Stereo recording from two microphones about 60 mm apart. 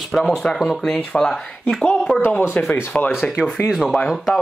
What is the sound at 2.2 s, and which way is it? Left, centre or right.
Speech, left.